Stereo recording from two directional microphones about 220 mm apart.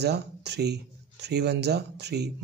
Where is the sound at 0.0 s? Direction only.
50° right (ahead or behind).